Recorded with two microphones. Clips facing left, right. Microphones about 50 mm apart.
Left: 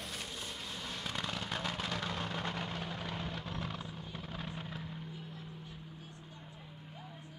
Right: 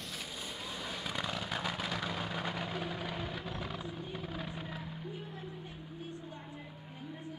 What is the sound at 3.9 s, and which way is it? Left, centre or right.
Helicopter, centre.